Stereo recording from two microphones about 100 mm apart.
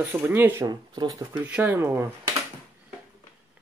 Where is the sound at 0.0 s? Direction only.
20° right (ahead or behind).